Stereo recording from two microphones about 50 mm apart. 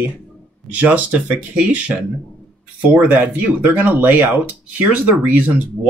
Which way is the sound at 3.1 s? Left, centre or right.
Right.